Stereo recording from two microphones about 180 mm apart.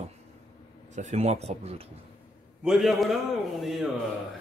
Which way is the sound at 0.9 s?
40° right (ahead or behind).